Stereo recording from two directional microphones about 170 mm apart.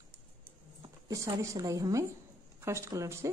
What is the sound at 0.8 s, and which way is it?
A woman's voice, 20° right (ahead or behind).